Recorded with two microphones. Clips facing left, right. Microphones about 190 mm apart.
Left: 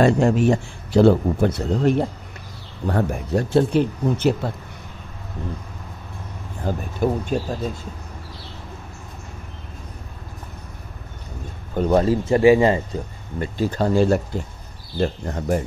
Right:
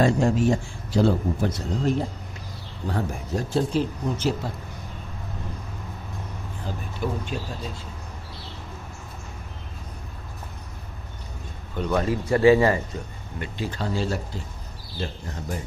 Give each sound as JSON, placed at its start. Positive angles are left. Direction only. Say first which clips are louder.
{"t": 0.0, "sound": "a man's voice", "louder": "left 4 dB", "side_deg": 65}
{"t": 6.6, "sound": "speech", "louder": "left 8 dB", "side_deg": 45}
{"t": 11.7, "sound": "speech", "louder": "left 7 dB", "side_deg": 40}
{"t": 12.4, "sound": "speech", "louder": "left 2 dB", "side_deg": 20}
{"t": 12.9, "sound": "a man's voice", "louder": "left 6 dB", "side_deg": 40}